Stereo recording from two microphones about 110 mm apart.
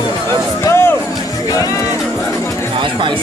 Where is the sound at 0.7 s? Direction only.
20° left (ahead or behind).